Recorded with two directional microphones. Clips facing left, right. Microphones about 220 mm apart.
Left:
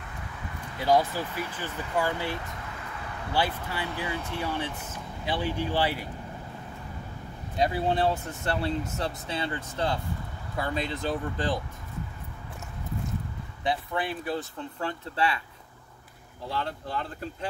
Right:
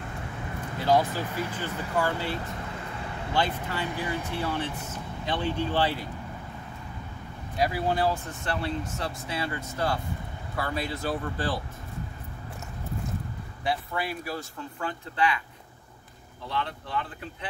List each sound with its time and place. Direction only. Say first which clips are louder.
0.7 s speech: even; 10° left (ahead or behind)
2.4 s vehicle: right 4 dB; 30° right (ahead or behind)
3.3 s speech: right 1 dB; 10° left (ahead or behind)
7.5 s speech: left 1 dB; 25° left (ahead or behind)
13.7 s speech: left 1 dB; 20° left (ahead or behind)
16.4 s speech: even; 35° left (ahead or behind)